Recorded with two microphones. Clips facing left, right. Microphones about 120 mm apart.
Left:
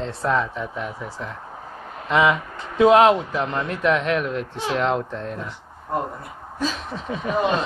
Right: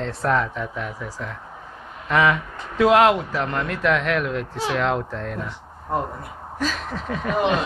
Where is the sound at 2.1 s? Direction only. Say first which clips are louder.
Left 1 dB; 20° left (ahead or behind).